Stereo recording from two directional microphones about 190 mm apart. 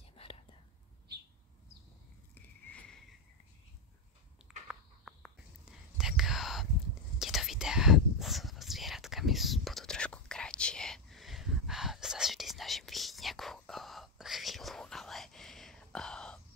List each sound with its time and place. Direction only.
0.0 s whispering: 30° left (ahead or behind)
2.3 s a sound: 5° left (ahead or behind)
4.5 s whispering: centre (ahead or behind)